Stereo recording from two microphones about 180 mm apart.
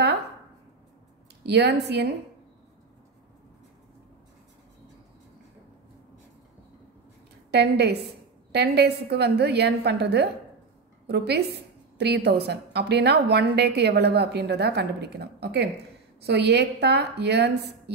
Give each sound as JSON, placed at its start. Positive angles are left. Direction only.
{"t": 1.4, "sound": "a woman's voice", "side_deg": -70}
{"t": 7.5, "sound": "a woman's voice", "side_deg": -70}